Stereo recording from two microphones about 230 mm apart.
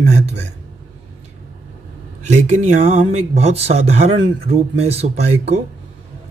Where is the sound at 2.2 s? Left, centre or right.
Right.